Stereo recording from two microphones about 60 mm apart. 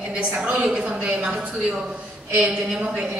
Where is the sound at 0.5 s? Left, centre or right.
Right.